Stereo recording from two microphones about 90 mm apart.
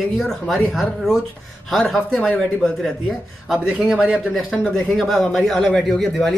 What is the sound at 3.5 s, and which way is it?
Speech, 10° right (ahead or behind).